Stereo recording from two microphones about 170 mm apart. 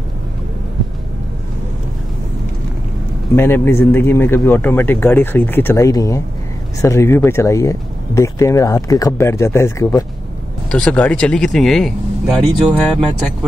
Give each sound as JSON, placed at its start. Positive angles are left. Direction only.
{"t": 3.3, "sound": "speech", "side_deg": 15}
{"t": 10.7, "sound": "speech", "side_deg": 5}